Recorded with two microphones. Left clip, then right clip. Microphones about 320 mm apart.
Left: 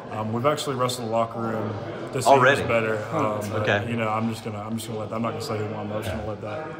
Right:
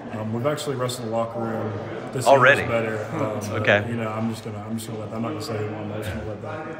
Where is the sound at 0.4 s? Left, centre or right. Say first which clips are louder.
Left 2 dB; centre.